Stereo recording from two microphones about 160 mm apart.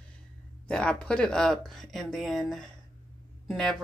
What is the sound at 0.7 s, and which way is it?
A woman's voice, 5° left (ahead or behind).